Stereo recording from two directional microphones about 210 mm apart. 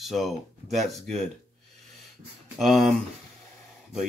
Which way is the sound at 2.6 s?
Centre (ahead or behind).